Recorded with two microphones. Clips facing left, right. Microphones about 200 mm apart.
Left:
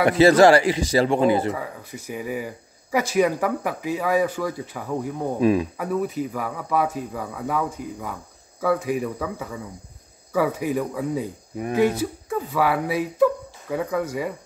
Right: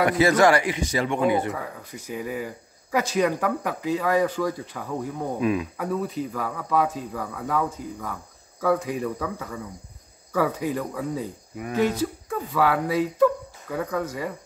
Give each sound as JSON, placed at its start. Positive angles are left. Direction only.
{"t": 0.0, "sound": "speech", "side_deg": 30}
{"t": 1.5, "sound": "speech", "side_deg": 10}
{"t": 5.4, "sound": "speech", "side_deg": 35}
{"t": 5.8, "sound": "speech", "side_deg": 10}